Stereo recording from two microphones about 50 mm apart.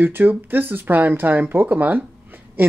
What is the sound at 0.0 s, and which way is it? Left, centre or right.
Speech, right.